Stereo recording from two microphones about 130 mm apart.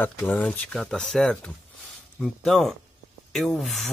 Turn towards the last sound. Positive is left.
turn(degrees=0)  # may be behind; listen again after turning